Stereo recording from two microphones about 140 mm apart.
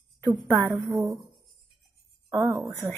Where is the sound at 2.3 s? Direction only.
15° right (ahead or behind).